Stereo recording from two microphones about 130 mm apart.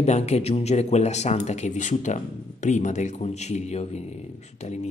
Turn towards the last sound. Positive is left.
turn(degrees=60)  # may be behind; listen again after turning